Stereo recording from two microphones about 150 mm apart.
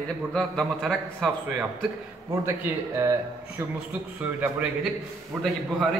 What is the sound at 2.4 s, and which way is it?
A man's voice, 15° right (ahead or behind).